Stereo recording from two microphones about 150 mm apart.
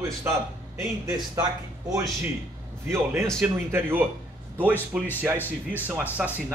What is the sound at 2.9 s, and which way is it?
A man's voice, 15° right (ahead or behind).